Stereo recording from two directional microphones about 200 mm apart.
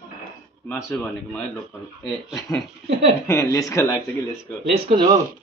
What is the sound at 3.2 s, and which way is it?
Speech, 15° left (ahead or behind).